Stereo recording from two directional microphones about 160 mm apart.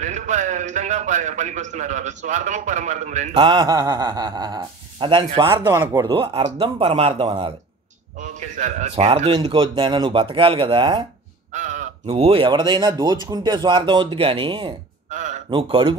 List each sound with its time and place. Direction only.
0.0 s a man's voice: 50° right (ahead or behind)
3.3 s speech: 30° right (ahead or behind)
5.5 s speech: 15° right (ahead or behind)
6.0 s speech: 30° right (ahead or behind)
8.2 s a man's voice: 50° right (ahead or behind)
9.3 s speech: 30° right (ahead or behind)
11.5 s speech: 50° right (ahead or behind); by 14.7 s 30° right (ahead or behind)
15.0 s a sound: 50° right (ahead or behind)
15.5 s speech: 35° right (ahead or behind)